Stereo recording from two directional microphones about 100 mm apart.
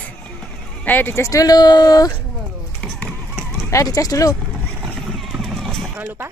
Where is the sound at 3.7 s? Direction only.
35° left (ahead or behind).